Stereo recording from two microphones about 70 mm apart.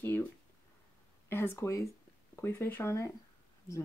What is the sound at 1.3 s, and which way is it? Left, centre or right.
Speech, left.